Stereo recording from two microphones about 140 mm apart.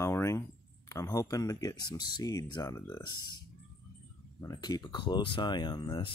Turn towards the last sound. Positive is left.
turn(degrees=30)  # may be behind; listen again after turning